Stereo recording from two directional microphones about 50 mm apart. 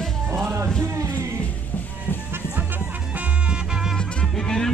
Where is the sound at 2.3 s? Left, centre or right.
Right.